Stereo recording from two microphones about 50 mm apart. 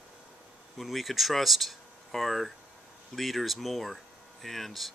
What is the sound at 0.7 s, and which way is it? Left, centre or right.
Speech, centre.